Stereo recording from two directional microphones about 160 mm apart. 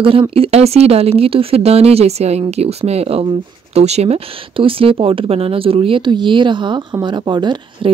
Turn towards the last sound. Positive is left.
turn(degrees=-30)  # may be behind; listen again after turning